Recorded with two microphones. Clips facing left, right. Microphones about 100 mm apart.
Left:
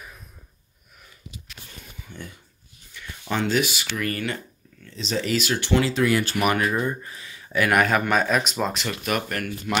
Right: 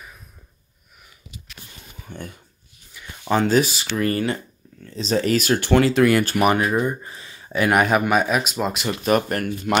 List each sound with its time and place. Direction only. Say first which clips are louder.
2.0 s a sound: right 5 dB; 50° right (ahead or behind)
2.9 s a sound: even; 10° right (ahead or behind)
3.3 s speech: right 5 dB; 40° right (ahead or behind)
4.8 s speech: right 6 dB; 40° right (ahead or behind); by 6.4 s 55° right (ahead or behind)
6.6 s speech: right 3 dB; 15° right (ahead or behind)
7.1 s speech: right 3 dB; 30° right (ahead or behind); by 8.8 s 10° right (ahead or behind)
9.1 s speech: right 8 dB; 40° right (ahead or behind)